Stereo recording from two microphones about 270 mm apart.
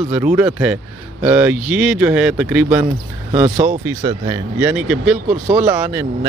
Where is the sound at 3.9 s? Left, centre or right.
Centre.